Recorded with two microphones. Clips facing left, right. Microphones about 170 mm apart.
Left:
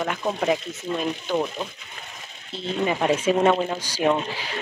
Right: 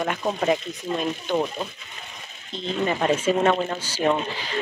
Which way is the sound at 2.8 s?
10° left (ahead or behind).